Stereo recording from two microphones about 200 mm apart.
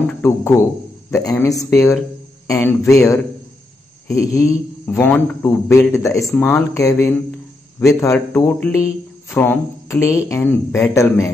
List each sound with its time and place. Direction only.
0.2 s a man's voice: 15° left (ahead or behind)